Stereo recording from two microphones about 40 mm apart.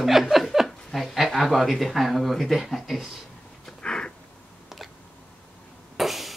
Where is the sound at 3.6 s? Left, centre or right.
Left.